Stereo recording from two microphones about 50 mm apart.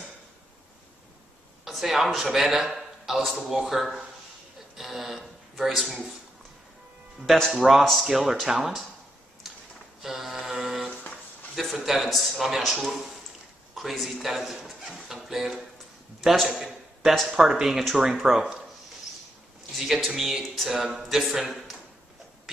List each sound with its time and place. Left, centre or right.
1.6 s a man's voice: centre
7.2 s a man's voice: centre
9.5 s a sound: centre
10.0 s mantra: centre
11.5 s a man's voice: centre
19.9 s speech: centre